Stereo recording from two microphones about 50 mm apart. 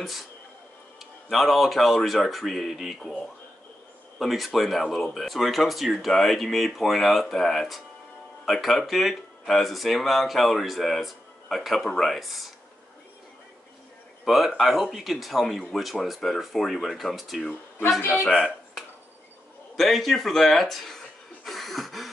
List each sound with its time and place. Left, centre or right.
0.0 s speech: centre
1.3 s speech: centre
14.2 s speech: centre
19.7 s speech: centre
21.5 s a sound: centre